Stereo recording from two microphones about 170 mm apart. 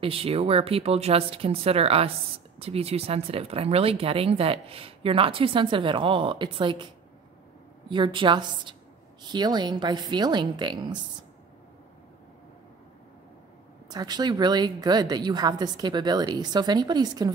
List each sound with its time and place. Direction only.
0.0 s speech: 35° right (ahead or behind)
7.9 s a woman's voice: 30° right (ahead or behind)
13.8 s a woman's voice: 25° right (ahead or behind)